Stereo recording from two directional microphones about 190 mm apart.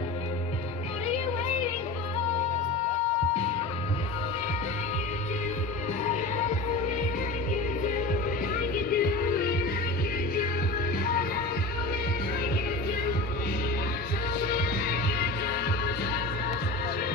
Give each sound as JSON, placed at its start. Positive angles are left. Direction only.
{"t": 8.1, "sound": "music", "side_deg": 50}
{"t": 14.4, "sound": "music", "side_deg": 50}